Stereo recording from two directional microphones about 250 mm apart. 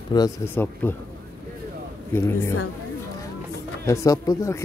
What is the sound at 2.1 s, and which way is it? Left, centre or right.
Speech, centre.